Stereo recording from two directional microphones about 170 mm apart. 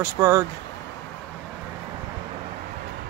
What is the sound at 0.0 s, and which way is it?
Speech, 15° right (ahead or behind).